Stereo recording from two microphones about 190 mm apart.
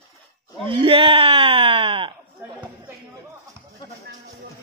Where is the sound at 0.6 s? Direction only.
25° right (ahead or behind).